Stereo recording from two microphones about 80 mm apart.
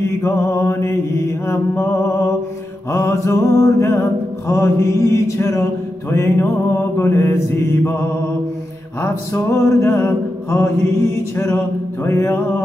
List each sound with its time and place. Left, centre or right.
0.0 s mantra: left
2.9 s mantra: left
9.0 s mantra: left